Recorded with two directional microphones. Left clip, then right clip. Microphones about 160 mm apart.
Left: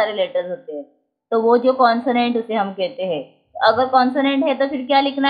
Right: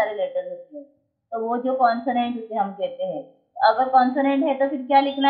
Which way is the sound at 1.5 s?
45° left (ahead or behind).